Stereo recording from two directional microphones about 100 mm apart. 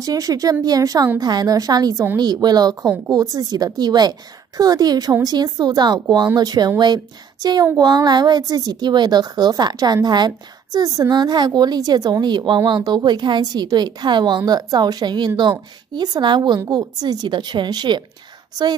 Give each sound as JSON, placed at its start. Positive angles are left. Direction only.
{"t": 0.0, "sound": "a woman's voice", "side_deg": -40}
{"t": 7.7, "sound": "a woman's voice", "side_deg": -45}